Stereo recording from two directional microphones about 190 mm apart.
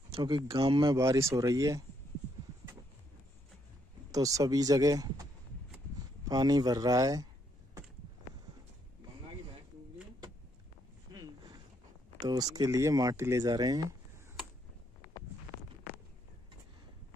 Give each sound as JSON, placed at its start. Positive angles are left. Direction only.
{"t": 0.1, "sound": "speech", "side_deg": -25}
{"t": 0.9, "sound": "speech", "side_deg": -15}
{"t": 4.1, "sound": "speech", "side_deg": -15}
{"t": 6.2, "sound": "speech", "side_deg": -20}
{"t": 11.1, "sound": "a sound", "side_deg": -20}
{"t": 12.2, "sound": "speech", "side_deg": -20}